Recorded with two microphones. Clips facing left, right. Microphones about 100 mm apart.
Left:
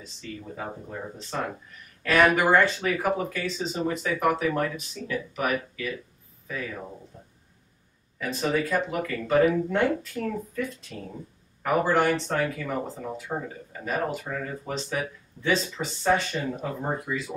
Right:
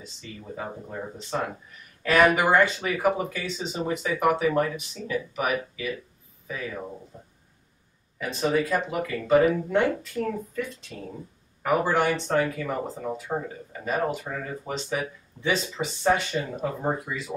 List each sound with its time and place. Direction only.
0.2 s speech: 5° right (ahead or behind)